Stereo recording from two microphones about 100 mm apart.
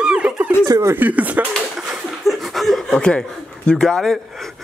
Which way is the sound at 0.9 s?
15° right (ahead or behind).